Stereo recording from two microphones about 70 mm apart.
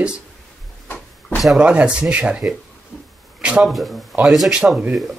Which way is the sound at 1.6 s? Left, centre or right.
Centre.